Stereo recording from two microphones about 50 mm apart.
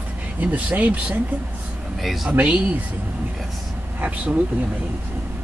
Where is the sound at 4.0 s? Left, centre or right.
Right.